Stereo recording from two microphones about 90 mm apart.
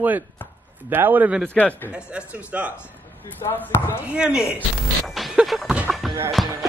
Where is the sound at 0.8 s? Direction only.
20° right (ahead or behind).